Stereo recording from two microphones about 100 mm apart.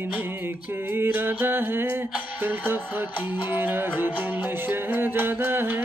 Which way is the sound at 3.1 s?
60° left (ahead or behind).